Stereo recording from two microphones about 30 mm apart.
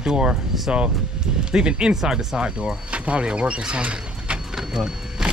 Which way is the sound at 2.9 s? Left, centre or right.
Right.